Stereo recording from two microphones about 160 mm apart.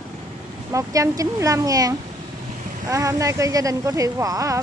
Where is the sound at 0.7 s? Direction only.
20° right (ahead or behind).